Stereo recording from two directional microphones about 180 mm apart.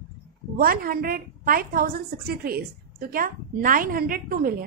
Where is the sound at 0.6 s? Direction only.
55° right (ahead or behind).